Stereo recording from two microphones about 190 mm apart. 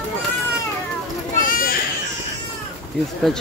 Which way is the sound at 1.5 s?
50° left (ahead or behind).